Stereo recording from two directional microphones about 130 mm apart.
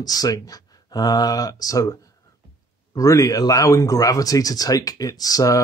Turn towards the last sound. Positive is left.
turn(degrees=25)  # may be behind; listen again after turning